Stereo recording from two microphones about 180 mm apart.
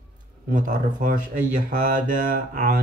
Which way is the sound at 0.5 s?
45° right (ahead or behind).